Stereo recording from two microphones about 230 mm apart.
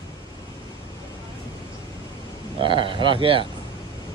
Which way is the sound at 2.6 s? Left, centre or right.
Right.